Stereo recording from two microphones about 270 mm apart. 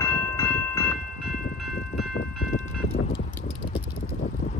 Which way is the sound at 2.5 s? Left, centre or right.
Left.